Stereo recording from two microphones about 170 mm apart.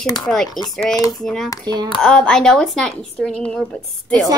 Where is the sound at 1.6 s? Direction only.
25° right (ahead or behind).